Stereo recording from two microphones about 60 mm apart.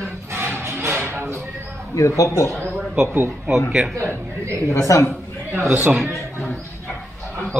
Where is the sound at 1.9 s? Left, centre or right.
Left.